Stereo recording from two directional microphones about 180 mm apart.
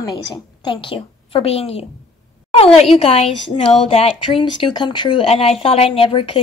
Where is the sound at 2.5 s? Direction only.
35° left (ahead or behind).